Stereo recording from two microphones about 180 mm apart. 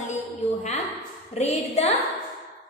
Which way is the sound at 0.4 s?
40° left (ahead or behind).